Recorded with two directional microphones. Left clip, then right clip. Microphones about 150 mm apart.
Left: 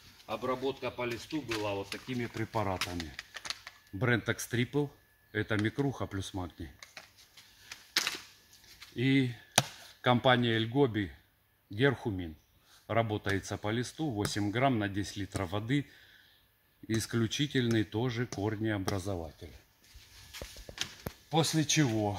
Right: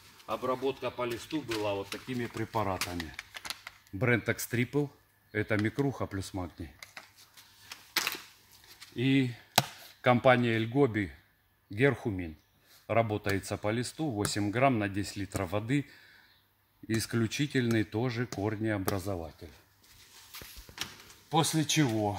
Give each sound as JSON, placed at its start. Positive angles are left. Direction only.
{"t": 0.4, "sound": "speech", "side_deg": 5}
{"t": 2.5, "sound": "speech", "side_deg": -5}
{"t": 3.0, "sound": "typewriter", "side_deg": 5}
{"t": 4.0, "sound": "speech", "side_deg": -40}
{"t": 6.8, "sound": "dog", "side_deg": 10}
{"t": 7.7, "sound": "a sound", "side_deg": 5}
{"t": 8.9, "sound": "speech", "side_deg": -10}
{"t": 10.0, "sound": "speech", "side_deg": -35}
{"t": 16.8, "sound": "speech", "side_deg": -30}
{"t": 20.7, "sound": "a sound", "side_deg": 15}
{"t": 21.5, "sound": "speech", "side_deg": 5}